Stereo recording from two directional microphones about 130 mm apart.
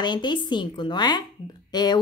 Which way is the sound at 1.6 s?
35° left (ahead or behind).